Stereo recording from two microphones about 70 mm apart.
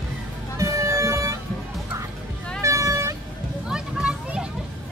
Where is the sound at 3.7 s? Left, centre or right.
Centre.